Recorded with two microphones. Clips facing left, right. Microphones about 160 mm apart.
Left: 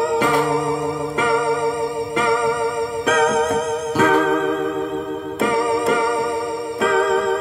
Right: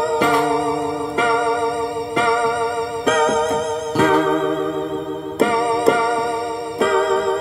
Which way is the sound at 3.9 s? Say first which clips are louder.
Right 1 dB; 30° right (ahead or behind).